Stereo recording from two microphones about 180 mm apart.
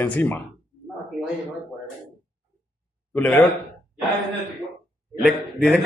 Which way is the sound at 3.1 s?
10° left (ahead or behind).